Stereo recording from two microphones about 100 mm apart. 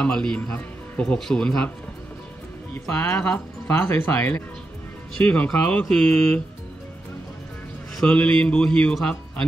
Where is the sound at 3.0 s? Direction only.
20° left (ahead or behind).